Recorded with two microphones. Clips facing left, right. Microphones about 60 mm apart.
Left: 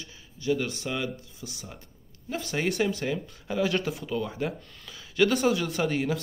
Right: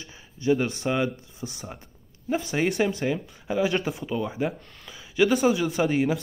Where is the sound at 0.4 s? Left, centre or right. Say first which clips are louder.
Right 4 dB; right.